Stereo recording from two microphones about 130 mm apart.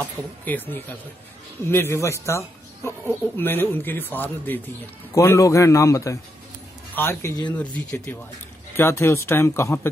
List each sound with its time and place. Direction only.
0.0 s speech: 15° left (ahead or behind)
8.7 s speech: 20° left (ahead or behind)